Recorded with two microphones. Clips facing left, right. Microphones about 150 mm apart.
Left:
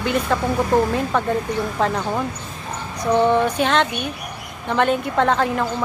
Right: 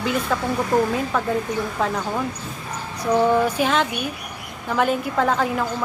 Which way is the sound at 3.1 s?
5° right (ahead or behind).